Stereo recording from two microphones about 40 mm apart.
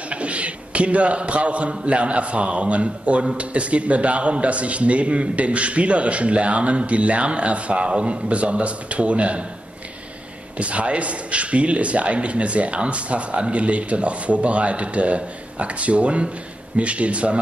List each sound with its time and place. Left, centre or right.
0.1 s a man's voice: right
10.6 s speech: right